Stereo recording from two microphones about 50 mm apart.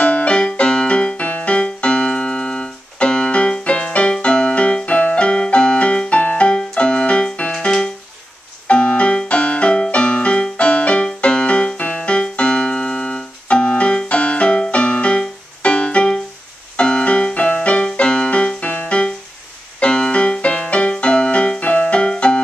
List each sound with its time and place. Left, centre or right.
0.0 s keyboard: left
8.6 s music: left
11.1 s keyboard: left